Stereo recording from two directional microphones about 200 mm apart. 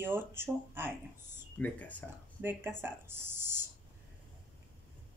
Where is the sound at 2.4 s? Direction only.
10° right (ahead or behind).